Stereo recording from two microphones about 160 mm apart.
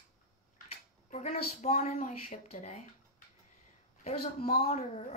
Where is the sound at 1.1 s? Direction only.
45° left (ahead or behind).